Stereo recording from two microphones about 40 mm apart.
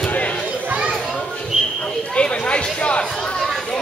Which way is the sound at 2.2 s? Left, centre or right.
Left.